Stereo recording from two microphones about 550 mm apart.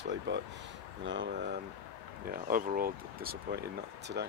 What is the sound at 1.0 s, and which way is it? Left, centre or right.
Speech, centre.